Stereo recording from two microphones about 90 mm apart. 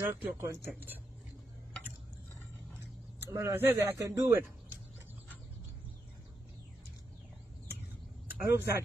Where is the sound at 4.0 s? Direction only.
40° right (ahead or behind).